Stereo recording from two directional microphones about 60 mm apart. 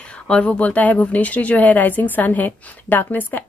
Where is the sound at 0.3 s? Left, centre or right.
Left.